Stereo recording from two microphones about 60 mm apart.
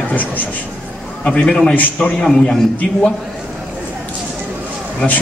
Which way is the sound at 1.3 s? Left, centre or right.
Centre.